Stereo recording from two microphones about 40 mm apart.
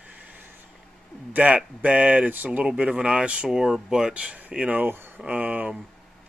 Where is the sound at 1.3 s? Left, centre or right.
Right.